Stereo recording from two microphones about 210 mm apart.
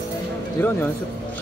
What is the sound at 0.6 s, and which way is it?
Speech, 10° left (ahead or behind).